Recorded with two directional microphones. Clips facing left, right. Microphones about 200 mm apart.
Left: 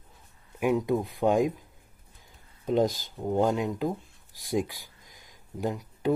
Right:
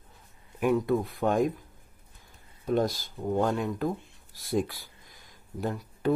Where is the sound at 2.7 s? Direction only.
15° left (ahead or behind).